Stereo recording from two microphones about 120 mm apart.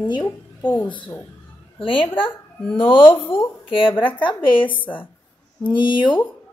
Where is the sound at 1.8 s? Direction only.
45° left (ahead or behind).